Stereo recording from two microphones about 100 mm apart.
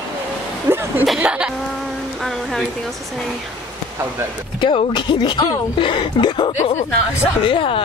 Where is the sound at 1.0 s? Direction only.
5° right (ahead or behind).